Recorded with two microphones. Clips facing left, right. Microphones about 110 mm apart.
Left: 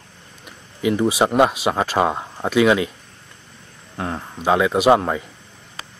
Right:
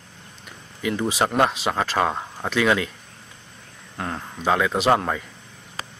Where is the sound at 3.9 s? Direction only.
10° left (ahead or behind).